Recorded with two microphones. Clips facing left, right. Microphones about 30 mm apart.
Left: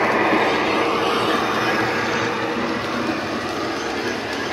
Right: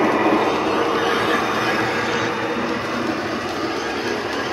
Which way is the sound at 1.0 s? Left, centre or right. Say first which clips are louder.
Right 1 dB; left.